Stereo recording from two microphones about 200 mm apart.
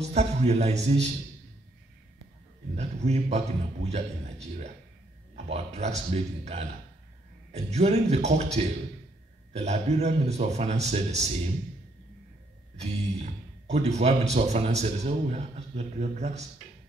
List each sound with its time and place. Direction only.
0.0 s speech: 35° right (ahead or behind)
2.7 s speech: 35° right (ahead or behind)
12.7 s speech: 30° right (ahead or behind)